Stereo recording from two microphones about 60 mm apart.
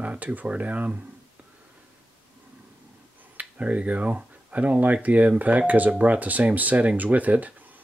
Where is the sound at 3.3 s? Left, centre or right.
Right.